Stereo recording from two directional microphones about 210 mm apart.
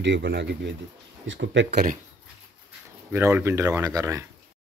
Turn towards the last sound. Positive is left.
turn(degrees=-15)  # may be behind; listen again after turning